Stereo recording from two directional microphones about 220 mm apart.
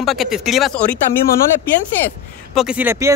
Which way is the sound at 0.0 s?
Centre (ahead or behind).